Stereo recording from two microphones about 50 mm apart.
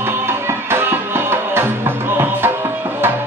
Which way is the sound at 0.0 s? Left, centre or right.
Right.